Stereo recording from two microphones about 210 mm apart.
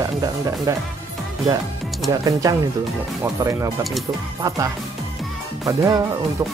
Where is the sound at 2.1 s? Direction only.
15° right (ahead or behind).